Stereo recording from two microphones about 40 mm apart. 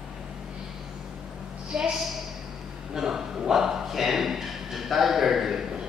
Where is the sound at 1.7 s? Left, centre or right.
Centre.